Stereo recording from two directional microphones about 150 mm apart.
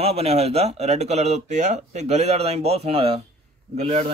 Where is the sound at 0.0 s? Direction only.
45° right (ahead or behind).